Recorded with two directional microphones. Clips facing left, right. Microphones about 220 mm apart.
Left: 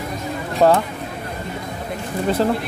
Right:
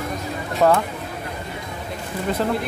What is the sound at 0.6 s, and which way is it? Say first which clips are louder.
Speech: left 2 dB; 30° left (ahead or behind).